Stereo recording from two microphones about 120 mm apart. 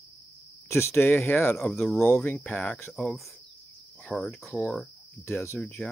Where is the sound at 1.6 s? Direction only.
Centre (ahead or behind).